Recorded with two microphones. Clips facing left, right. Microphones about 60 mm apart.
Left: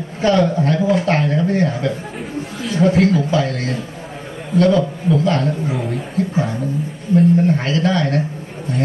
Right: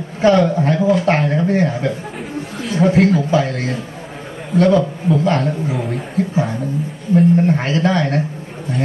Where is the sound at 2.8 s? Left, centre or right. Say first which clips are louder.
Right 1 dB; centre.